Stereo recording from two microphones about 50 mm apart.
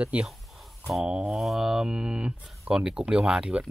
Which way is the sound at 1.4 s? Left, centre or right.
Centre.